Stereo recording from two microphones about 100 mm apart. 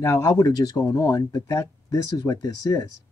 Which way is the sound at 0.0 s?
30° left (ahead or behind).